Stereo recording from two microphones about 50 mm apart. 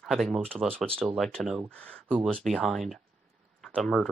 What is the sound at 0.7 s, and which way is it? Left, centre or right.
Speech, centre.